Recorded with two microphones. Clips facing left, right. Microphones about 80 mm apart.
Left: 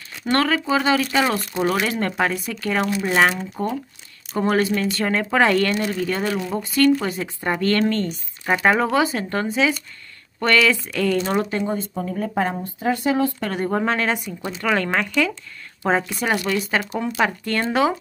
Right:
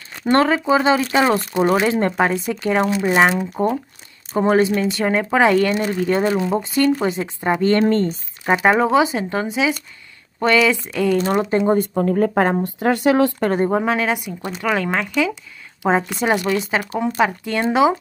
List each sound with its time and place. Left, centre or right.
0.2 s speech: right
8.5 s speech: centre
11.7 s speech: right
12.6 s speech: right
13.4 s speech: right
13.7 s speech: centre